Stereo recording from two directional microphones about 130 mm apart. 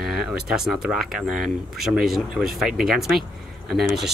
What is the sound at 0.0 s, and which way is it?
Speech, 5° right (ahead or behind).